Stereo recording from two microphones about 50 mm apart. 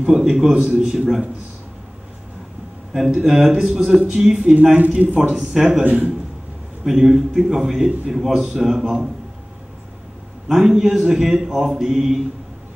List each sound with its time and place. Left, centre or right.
0.0 s a man's voice: centre
2.9 s a man's voice: centre
4.7 s a man's voice: right
5.3 s a man's voice: centre
5.9 s a man's voice: right
6.8 s a man's voice: centre
10.5 s a man's voice: centre